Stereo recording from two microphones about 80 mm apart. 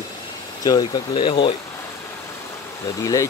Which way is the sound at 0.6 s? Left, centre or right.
Left.